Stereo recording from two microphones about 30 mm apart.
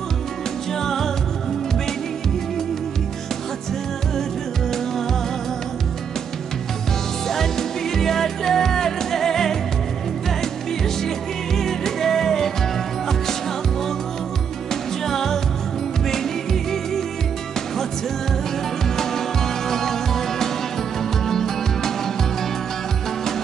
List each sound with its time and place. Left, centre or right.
0.7 s music: centre
7.2 s music: centre
11.1 s music: centre
15.0 s music: centre
19.7 s music: centre